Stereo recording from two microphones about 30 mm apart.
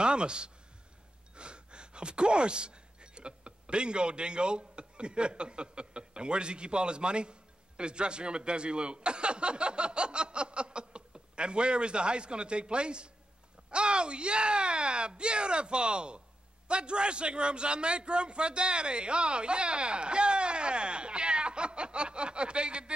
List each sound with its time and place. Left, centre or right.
0.0 s a man's voice: right